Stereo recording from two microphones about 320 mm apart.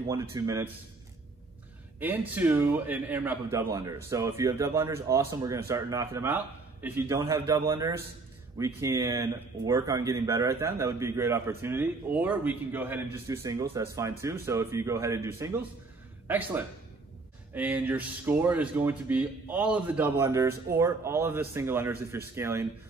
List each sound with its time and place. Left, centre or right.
0.0 s speech: centre
2.0 s a man's voice: centre